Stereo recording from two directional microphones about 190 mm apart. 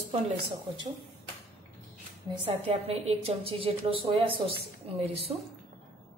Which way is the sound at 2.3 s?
30° right (ahead or behind).